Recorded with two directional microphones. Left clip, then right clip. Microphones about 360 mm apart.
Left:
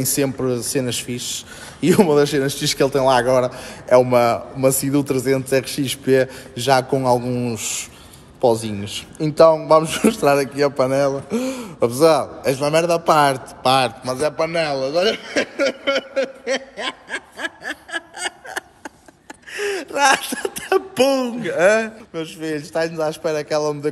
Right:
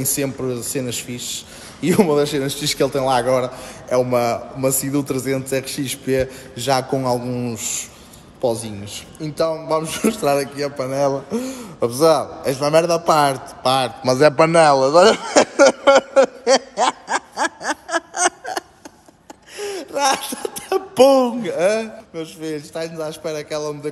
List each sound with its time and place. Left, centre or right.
0.0 s speech: centre
14.0 s a man's voice: right
14.6 s a man's voice: centre
15.7 s a sound: right
16.7 s snicker: centre
19.5 s a sound: centre
20.2 s a man's voice: right
20.4 s a man's voice: centre